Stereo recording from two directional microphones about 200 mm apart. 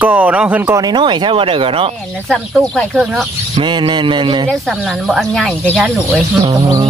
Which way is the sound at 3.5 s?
25° right (ahead or behind).